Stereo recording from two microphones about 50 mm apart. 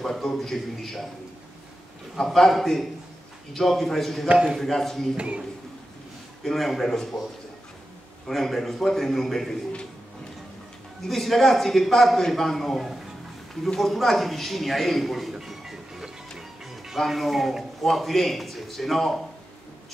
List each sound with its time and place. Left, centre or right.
0.0 s a man's voice: centre
2.2 s a man's voice: centre
4.3 s a man's voice: centre
4.6 s a man's voice: centre
5.1 s a man's voice: right
6.4 s a man's voice: centre
8.3 s a man's voice: centre
11.1 s a man's voice: centre
15.3 s music: centre
17.0 s a man's voice: centre